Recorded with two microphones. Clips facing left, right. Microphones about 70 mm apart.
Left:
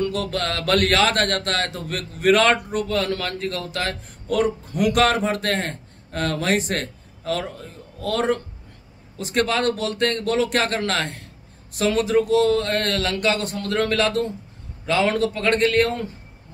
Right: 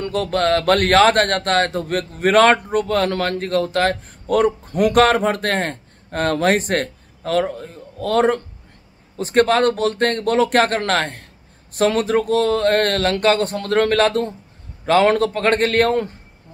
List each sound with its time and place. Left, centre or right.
0.0 s speech: right